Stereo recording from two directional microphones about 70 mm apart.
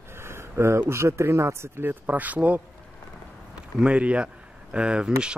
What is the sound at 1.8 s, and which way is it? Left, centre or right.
Speech, right.